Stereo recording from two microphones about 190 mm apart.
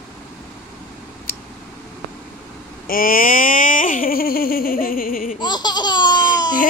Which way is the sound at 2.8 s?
50° left (ahead or behind).